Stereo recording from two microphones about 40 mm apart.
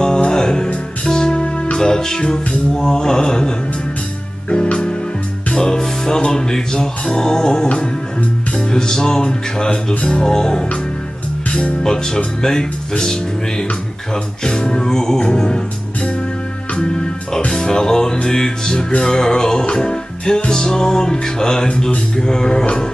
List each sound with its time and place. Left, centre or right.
0.0 s music: centre
11.8 s music: centre
16.7 s music: left